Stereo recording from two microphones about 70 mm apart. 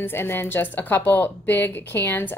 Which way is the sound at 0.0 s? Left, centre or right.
Left.